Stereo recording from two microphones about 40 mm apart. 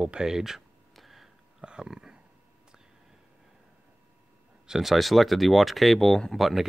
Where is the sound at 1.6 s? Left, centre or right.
Centre.